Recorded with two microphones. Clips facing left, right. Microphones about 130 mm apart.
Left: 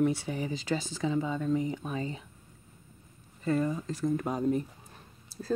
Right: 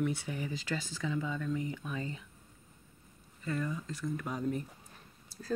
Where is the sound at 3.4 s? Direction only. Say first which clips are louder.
Left 7 dB; 35° left (ahead or behind).